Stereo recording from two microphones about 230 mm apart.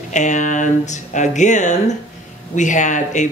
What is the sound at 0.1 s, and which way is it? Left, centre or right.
Speech, left.